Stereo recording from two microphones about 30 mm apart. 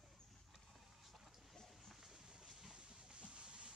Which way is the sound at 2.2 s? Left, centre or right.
Right.